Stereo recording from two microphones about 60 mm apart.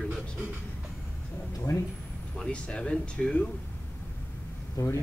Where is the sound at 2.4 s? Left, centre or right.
Centre.